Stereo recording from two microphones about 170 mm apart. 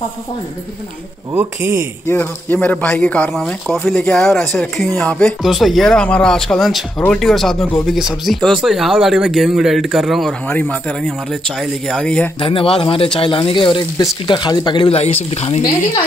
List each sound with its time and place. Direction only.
1.3 s speech: 15° right (ahead or behind)
2.0 s speech: 10° left (ahead or behind)
12.4 s speech: 30° left (ahead or behind)